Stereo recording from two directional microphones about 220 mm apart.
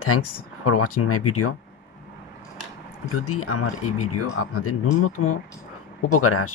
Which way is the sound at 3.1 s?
85° left.